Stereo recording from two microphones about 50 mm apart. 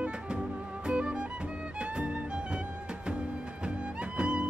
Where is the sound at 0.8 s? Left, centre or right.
Centre.